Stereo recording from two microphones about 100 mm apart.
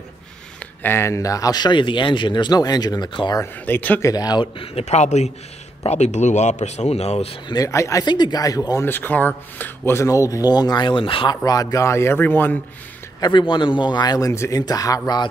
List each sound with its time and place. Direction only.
0.8 s speech: 25° left (ahead or behind); by 3.2 s 45° left (ahead or behind)
3.6 s speech: 15° left (ahead or behind)
4.0 s speech: 40° left (ahead or behind)
4.6 s speech: 90° left
7.4 s speech: 35° left (ahead or behind)
8.0 s speech: 45° left (ahead or behind)
8.8 s speech: 20° left (ahead or behind)
10.0 s speech: 35° left (ahead or behind); by 11.3 s 60° left (ahead or behind)
11.4 s speech: 35° left (ahead or behind); by 12.5 s 20° left (ahead or behind)
13.2 s speech: 50° left (ahead or behind)
14.3 s speech: 25° left (ahead or behind)
14.6 s speech: 40° left (ahead or behind)